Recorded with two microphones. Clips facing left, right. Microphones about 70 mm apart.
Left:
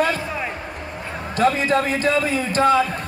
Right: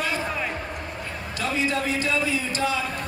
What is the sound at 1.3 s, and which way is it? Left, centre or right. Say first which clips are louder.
A man's voice: left 8 dB; left.